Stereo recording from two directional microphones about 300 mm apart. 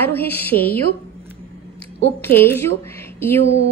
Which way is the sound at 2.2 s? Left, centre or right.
Centre.